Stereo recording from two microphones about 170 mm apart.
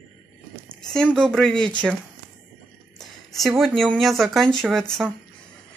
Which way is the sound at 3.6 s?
Centre (ahead or behind).